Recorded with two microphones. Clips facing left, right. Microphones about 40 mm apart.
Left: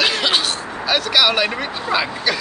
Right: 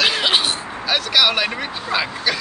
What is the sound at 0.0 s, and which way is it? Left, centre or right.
Vehicle, centre.